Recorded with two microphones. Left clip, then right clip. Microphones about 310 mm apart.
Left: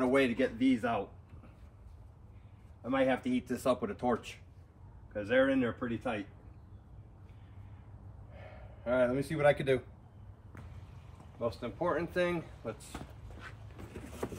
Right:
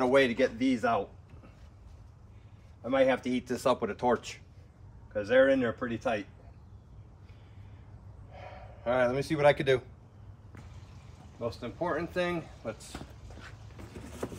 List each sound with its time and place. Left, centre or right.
0.2 s speech: centre
2.8 s speech: centre
8.8 s speech: centre
9.4 s speech: centre
11.3 s a sound: centre